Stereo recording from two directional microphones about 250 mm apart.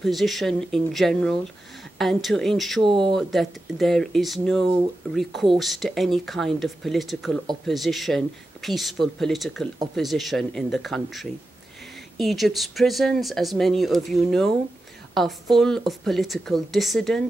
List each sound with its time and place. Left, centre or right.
0.0 s speech: centre
2.8 s speech: centre
3.2 s speech: centre
15.6 s speech: centre